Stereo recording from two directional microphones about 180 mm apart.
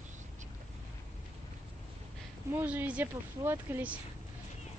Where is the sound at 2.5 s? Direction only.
10° right (ahead or behind).